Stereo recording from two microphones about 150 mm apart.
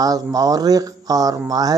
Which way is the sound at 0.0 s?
25° right (ahead or behind).